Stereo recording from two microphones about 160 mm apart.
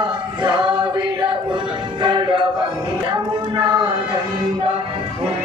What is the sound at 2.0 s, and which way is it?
Music, 30° right (ahead or behind).